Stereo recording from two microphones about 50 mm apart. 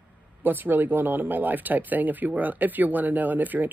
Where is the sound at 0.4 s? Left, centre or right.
Right.